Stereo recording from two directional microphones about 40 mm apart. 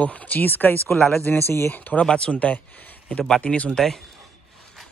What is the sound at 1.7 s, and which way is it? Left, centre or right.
Speech, left.